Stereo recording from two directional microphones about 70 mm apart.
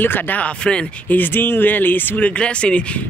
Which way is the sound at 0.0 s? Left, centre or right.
Left.